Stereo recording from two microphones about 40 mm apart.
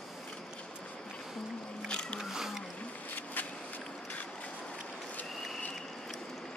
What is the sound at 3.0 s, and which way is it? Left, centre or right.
Vehicle, left.